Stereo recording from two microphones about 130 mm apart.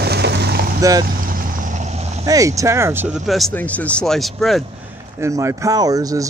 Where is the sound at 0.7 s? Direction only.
25° right (ahead or behind).